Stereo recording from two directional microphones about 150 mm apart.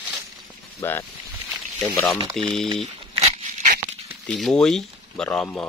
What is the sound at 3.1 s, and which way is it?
Dog, 45° right (ahead or behind).